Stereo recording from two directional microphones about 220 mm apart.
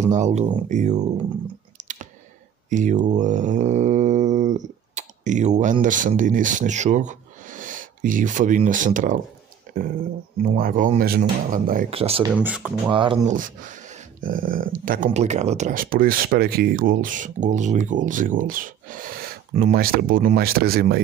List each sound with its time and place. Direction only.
0.1 s speech: 30° right (ahead or behind)
1.8 s clicking: 35° right (ahead or behind)
2.7 s mantra: 35° right (ahead or behind)
9.7 s a sound: 40° right (ahead or behind)
10.4 s speech: 35° right (ahead or behind)
11.9 s speech: 25° right (ahead or behind)
12.4 s speech: 5° right (ahead or behind)
12.9 s speech: 25° right (ahead or behind); by 21.0 s 45° right (ahead or behind)